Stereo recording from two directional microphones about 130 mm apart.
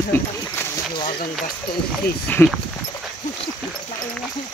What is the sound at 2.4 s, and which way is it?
Speech, 15° left (ahead or behind).